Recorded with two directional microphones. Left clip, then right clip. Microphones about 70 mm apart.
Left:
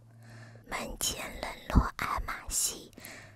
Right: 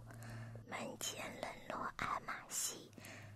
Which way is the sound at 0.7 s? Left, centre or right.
Left.